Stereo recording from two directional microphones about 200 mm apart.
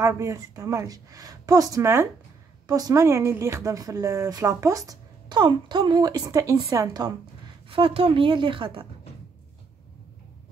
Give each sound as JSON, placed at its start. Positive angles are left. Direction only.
{"t": 0.0, "sound": "a woman's voice", "side_deg": -15}